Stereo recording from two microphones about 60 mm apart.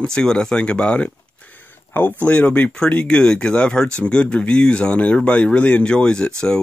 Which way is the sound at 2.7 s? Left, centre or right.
Centre.